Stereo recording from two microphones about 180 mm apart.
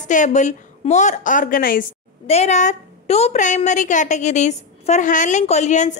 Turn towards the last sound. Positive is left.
turn(degrees=40)  # may be behind; listen again after turning